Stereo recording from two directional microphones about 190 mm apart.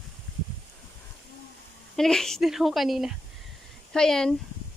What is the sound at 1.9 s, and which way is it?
A woman's voice, centre (ahead or behind).